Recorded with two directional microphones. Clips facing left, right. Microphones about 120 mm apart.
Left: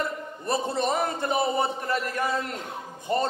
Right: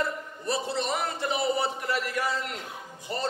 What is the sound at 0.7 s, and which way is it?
A man's voice, 50° left (ahead or behind).